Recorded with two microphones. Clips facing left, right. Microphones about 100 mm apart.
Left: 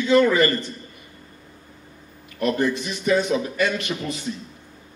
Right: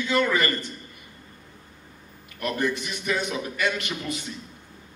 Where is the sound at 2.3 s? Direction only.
25° left (ahead or behind).